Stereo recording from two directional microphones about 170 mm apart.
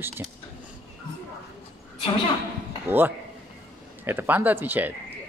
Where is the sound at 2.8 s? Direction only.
10° right (ahead or behind).